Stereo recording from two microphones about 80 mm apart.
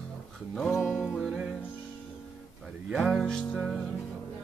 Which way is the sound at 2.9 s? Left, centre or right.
Centre.